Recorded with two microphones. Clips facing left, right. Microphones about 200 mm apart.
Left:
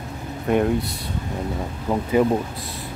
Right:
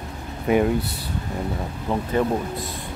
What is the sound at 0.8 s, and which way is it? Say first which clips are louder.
Speech: left 1 dB; 70° right (ahead or behind).